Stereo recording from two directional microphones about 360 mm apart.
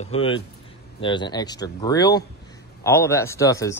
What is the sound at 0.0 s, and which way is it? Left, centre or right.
Speech, centre.